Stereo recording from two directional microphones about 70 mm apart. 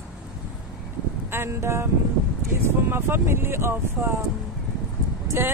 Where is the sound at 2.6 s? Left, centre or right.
Right.